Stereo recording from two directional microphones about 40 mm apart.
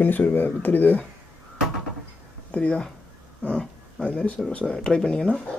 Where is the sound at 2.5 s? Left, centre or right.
Left.